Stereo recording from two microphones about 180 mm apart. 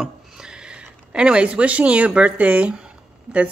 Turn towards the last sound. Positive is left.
turn(degrees=-5)  # may be behind; listen again after turning